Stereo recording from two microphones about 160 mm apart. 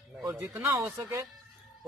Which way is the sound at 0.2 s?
15° right (ahead or behind).